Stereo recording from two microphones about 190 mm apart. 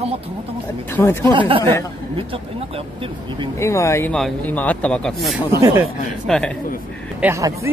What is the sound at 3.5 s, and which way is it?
Speech, 15° left (ahead or behind).